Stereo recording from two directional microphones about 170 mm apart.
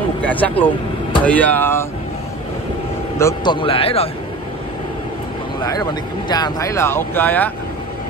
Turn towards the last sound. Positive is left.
turn(degrees=10)  # may be behind; listen again after turning